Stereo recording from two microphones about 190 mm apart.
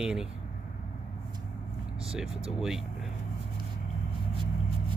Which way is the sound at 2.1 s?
5° right (ahead or behind).